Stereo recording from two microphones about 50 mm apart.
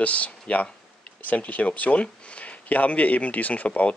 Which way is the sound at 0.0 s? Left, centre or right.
Left.